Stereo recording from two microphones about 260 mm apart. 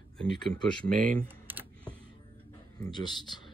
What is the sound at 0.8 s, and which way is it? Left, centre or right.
Speech, right.